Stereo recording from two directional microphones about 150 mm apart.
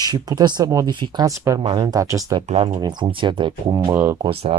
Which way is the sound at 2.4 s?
45° right (ahead or behind).